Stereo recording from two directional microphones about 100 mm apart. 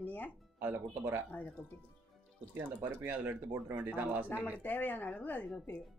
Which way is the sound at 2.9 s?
20° right (ahead or behind).